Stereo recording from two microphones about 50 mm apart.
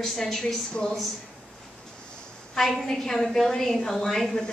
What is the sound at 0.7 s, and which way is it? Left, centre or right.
Speech, centre.